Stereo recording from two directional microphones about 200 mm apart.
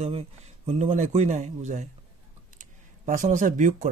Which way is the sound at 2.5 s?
40° right (ahead or behind).